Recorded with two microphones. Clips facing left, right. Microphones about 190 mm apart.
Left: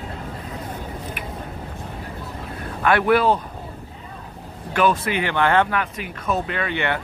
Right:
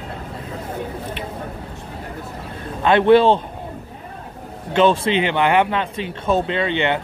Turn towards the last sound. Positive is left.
turn(degrees=-20)  # may be behind; listen again after turning